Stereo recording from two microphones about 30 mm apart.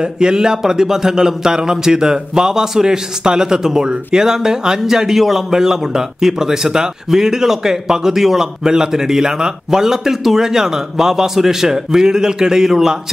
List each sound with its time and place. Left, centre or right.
0.0 s a man's voice: right